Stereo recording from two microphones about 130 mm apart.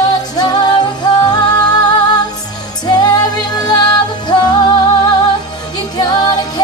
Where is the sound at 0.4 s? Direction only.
35° left (ahead or behind).